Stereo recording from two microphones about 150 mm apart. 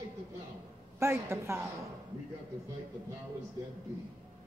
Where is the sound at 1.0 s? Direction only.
15° right (ahead or behind).